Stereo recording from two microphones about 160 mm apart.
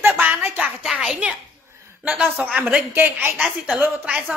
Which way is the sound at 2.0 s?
5° right (ahead or behind).